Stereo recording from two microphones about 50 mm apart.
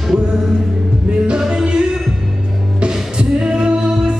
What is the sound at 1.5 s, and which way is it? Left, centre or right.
Music, centre.